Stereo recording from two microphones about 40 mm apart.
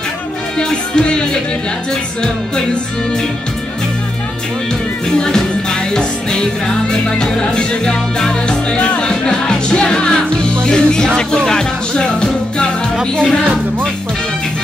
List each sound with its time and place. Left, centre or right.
0.6 s music: left
5.1 s music: centre
9.0 s music: centre